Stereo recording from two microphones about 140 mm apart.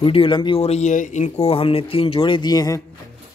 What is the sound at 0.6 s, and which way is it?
A man's voice, 55° left (ahead or behind).